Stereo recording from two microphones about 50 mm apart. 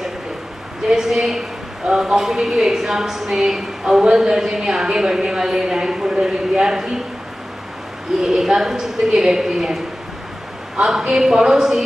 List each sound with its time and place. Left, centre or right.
0.8 s a woman's voice: centre
8.2 s a woman's voice: centre
10.8 s a woman's voice: centre